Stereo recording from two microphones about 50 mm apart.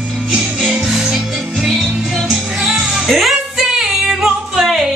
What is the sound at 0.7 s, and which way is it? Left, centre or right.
Music, centre.